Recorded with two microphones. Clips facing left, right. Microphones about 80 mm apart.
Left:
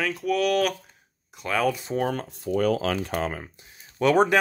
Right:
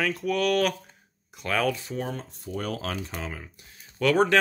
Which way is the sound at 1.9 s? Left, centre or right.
Left.